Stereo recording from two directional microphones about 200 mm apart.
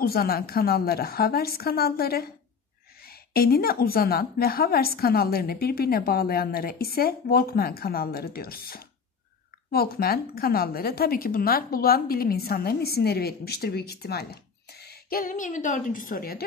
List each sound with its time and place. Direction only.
0.0 s a woman's voice: 50° left (ahead or behind)